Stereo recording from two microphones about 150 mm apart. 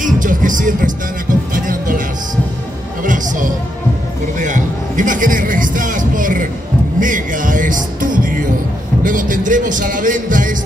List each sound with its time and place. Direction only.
0.0 s speech: 60° right (ahead or behind)
1.5 s music: 65° right (ahead or behind)
3.0 s a sound: 60° right (ahead or behind)
4.4 s music: 60° right (ahead or behind)
9.0 s speech: 60° right (ahead or behind)